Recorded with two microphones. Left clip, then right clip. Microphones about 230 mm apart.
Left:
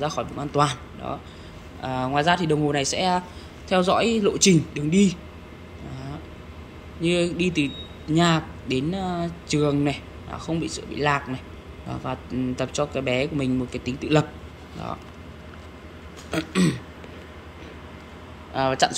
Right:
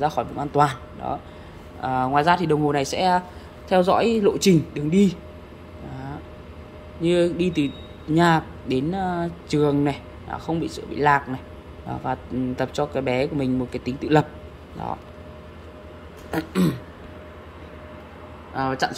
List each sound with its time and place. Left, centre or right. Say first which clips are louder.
0.0 s a man's voice: right 4 dB; centre
7.0 s a man's voice: right 3 dB; centre
16.3 s a man's voice: even; centre
18.5 s speech: left 3 dB; centre